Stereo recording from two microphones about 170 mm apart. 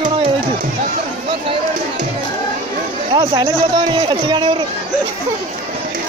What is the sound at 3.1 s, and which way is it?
Speech, 25° right (ahead or behind).